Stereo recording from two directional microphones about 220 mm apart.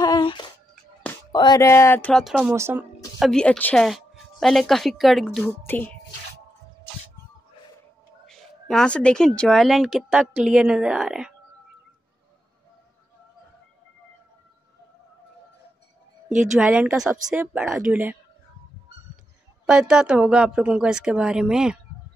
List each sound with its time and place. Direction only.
0.0 s a sound: 20° left (ahead or behind)
1.3 s speech: 20° left (ahead or behind); by 2.5 s centre (ahead or behind)
2.5 s speech: 10° right (ahead or behind)
3.2 s a woman's voice: 5° left (ahead or behind)
8.3 s a woman's voice: centre (ahead or behind)
16.5 s a woman's voice: 5° right (ahead or behind)
19.6 s a woman's voice: 5° right (ahead or behind)